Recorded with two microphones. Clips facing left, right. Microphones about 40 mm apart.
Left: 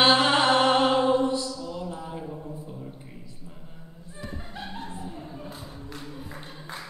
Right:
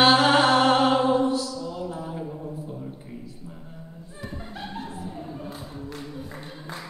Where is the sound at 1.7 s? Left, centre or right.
Centre.